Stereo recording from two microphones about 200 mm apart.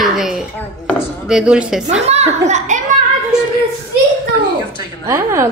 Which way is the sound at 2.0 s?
35° right (ahead or behind).